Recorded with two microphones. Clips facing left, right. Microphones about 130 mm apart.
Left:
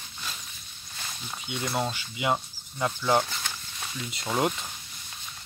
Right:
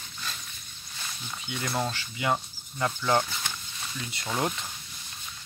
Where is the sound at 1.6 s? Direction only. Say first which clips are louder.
Left 1 dB; 10° left (ahead or behind).